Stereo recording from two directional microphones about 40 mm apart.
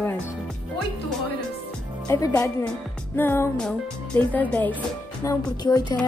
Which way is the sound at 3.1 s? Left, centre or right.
Left.